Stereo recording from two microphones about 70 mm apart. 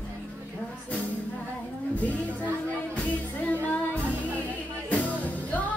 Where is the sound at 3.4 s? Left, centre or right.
Left.